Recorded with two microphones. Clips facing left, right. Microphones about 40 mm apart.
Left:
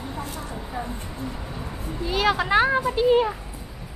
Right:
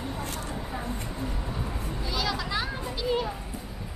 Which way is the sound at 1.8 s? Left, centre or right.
Left.